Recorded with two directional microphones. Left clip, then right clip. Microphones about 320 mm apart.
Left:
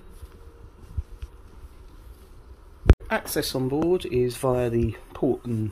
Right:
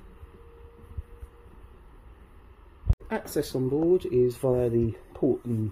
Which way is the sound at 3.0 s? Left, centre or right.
Centre.